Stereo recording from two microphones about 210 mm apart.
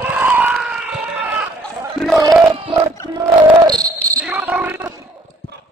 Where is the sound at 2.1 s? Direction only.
15° right (ahead or behind).